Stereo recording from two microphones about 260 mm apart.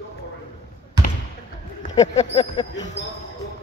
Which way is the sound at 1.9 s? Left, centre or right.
Left.